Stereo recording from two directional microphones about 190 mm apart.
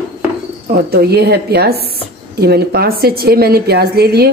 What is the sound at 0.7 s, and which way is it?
A woman's voice, 55° right (ahead or behind).